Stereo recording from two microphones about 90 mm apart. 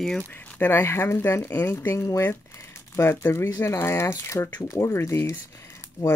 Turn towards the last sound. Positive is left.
turn(degrees=30)  # may be behind; listen again after turning